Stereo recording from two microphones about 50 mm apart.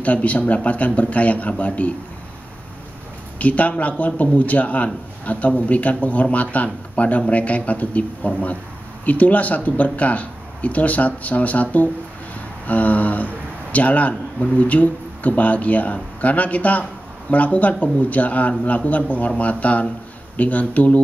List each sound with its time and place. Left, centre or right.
0.0 s speech: left
3.3 s speech: left